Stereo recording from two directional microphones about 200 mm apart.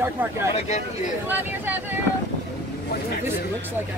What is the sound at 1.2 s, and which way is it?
Speech, 10° right (ahead or behind).